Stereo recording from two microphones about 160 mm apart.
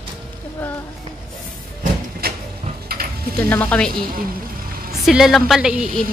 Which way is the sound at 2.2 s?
70° right (ahead or behind).